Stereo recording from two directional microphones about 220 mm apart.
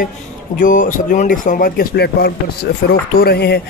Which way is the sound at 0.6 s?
35° left (ahead or behind).